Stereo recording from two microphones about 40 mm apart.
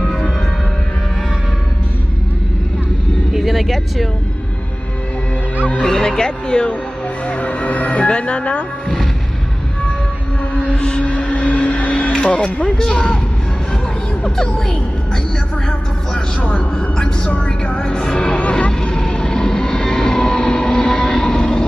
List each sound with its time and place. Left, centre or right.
3.3 s vehicle: centre
5.8 s music: centre
6.0 s speech: left
7.2 s speech: left
10.7 s a sound: left
11.1 s a sound: left
12.9 s speech: left
14.2 s speech: centre
16.3 s speech: left
16.9 s speech: centre
17.3 s speech: left
17.8 s speech: centre
18.1 s speech: left
18.7 s vehicle: centre